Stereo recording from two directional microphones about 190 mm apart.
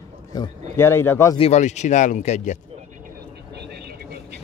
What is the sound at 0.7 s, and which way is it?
Speech, 10° left (ahead or behind).